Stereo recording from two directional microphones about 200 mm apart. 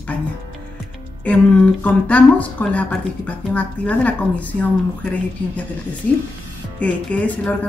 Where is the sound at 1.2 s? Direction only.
5° left (ahead or behind).